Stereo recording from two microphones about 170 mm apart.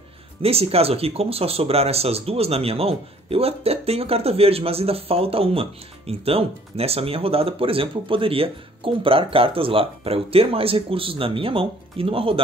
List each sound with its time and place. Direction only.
0.4 s speech: 35° right (ahead or behind)